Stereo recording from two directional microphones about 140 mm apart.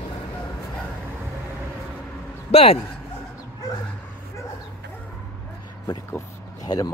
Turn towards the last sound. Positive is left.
turn(degrees=25)  # may be behind; listen again after turning